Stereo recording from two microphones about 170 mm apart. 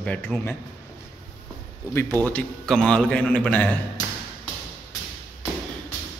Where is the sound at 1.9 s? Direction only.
15° left (ahead or behind).